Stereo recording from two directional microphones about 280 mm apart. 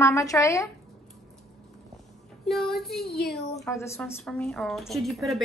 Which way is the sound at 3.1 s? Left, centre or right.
Left.